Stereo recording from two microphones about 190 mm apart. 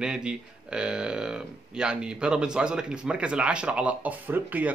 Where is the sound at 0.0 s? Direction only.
5° right (ahead or behind).